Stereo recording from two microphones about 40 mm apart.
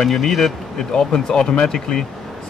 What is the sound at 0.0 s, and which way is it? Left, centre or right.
Speech, centre.